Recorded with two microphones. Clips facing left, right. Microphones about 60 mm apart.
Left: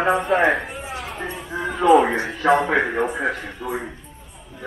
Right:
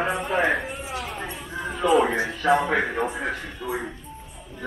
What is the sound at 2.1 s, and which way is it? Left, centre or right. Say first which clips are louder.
Speech: left 3 dB; left.